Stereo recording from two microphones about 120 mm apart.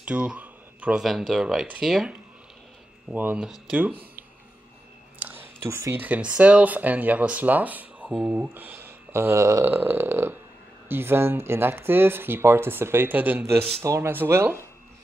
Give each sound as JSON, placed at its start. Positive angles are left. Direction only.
{"t": 0.0, "sound": "a sound", "side_deg": -10}
{"t": 1.0, "sound": "speech", "side_deg": 0}
{"t": 3.1, "sound": "speech", "side_deg": -10}
{"t": 5.2, "sound": "speech", "side_deg": -15}